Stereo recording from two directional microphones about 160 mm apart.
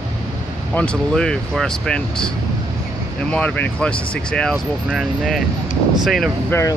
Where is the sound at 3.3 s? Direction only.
10° left (ahead or behind).